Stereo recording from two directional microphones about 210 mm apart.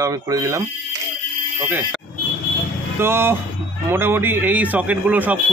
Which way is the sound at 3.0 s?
10° right (ahead or behind).